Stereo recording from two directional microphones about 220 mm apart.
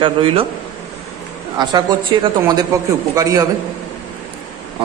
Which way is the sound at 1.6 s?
20° right (ahead or behind).